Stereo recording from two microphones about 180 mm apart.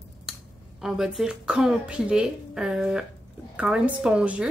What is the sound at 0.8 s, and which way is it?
A woman's voice, centre (ahead or behind).